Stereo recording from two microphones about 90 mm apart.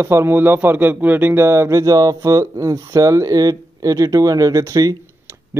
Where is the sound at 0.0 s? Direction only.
30° right (ahead or behind).